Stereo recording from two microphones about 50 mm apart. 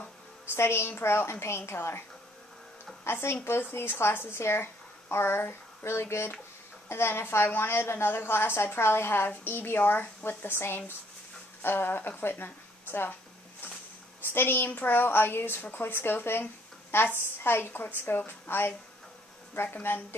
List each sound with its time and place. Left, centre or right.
0.5 s a woman's voice: left
3.0 s a woman's voice: left
12.2 s a sound: left
14.3 s a woman's voice: left